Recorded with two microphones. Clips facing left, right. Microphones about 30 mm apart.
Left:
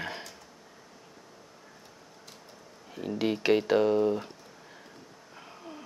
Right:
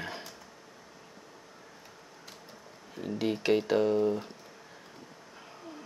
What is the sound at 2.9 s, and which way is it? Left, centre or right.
Speech, centre.